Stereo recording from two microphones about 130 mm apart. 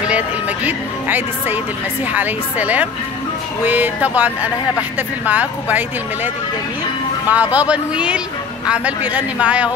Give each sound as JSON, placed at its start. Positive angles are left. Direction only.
{"t": 0.7, "sound": "speech", "side_deg": -15}